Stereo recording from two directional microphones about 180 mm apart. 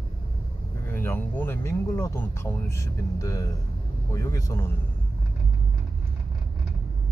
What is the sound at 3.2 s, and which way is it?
Speech, 20° left (ahead or behind).